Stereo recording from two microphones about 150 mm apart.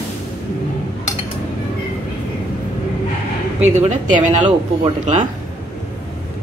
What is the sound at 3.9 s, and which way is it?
Speech, 55° right (ahead or behind).